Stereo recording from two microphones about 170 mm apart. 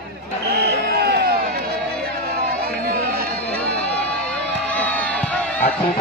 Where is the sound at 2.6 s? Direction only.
60° right (ahead or behind).